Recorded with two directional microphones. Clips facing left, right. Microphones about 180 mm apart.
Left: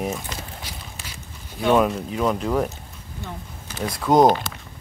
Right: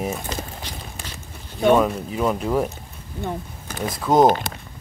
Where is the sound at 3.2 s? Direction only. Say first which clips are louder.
Right 7 dB; 55° right (ahead or behind).